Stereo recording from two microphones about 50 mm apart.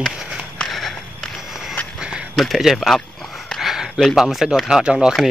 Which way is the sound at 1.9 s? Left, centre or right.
Centre.